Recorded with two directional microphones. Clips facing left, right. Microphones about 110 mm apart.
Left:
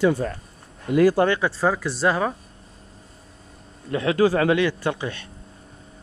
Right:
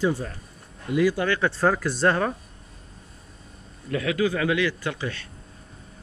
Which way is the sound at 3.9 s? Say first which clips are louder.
Left 5 dB; 30° left (ahead or behind).